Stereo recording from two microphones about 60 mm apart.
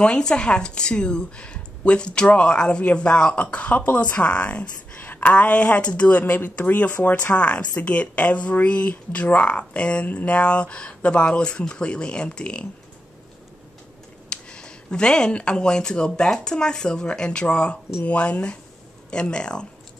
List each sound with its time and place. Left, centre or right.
0.0 s speech: centre
14.3 s speech: centre